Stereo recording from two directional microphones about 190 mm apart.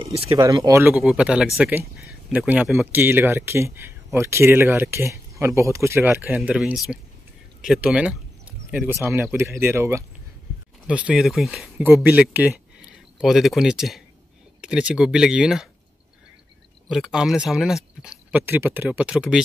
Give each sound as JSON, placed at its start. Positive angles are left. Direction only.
{"t": 0.0, "sound": "a sound", "side_deg": -30}
{"t": 0.4, "sound": "speech", "side_deg": -20}
{"t": 16.9, "sound": "speech", "side_deg": -5}